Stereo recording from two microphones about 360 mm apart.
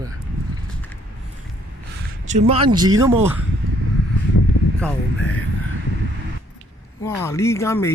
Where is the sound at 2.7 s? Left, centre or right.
Right.